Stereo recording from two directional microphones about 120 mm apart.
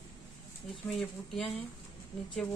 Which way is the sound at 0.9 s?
5° left (ahead or behind).